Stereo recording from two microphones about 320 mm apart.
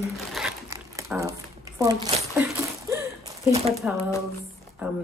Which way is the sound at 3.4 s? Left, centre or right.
Centre.